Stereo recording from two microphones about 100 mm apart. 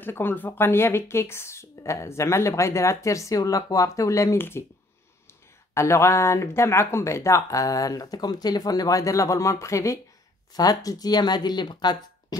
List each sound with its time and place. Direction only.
0.0 s speech: 20° left (ahead or behind)
5.8 s speech: 30° left (ahead or behind); by 12.4 s 45° left (ahead or behind)